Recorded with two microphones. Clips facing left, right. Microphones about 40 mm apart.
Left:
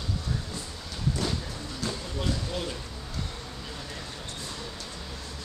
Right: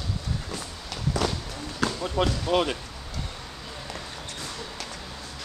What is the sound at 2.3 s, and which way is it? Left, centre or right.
Speech, right.